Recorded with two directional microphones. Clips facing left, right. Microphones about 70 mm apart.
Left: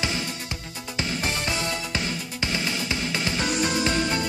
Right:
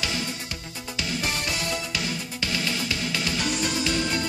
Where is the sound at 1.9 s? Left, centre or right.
Left.